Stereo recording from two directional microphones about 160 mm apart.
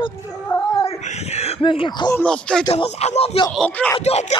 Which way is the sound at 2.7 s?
40° left (ahead or behind).